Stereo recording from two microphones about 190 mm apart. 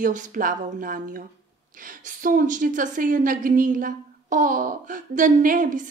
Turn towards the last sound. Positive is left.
turn(degrees=-45)  # may be behind; listen again after turning